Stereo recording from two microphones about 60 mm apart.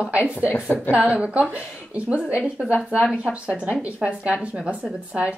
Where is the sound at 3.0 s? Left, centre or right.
Centre.